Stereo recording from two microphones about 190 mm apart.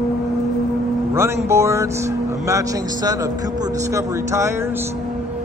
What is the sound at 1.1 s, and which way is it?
Speech, 15° right (ahead or behind).